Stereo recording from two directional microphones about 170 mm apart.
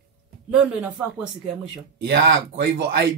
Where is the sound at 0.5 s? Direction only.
5° right (ahead or behind).